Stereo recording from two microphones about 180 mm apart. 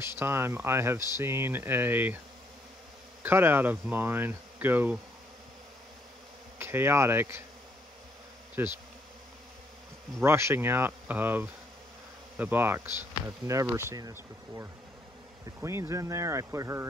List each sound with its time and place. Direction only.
0.2 s speech: 15° right (ahead or behind)
3.2 s speech: 10° right (ahead or behind)
6.6 s speech: 15° right (ahead or behind)
8.6 s speech: 15° right (ahead or behind)
10.2 s speech: 15° right (ahead or behind)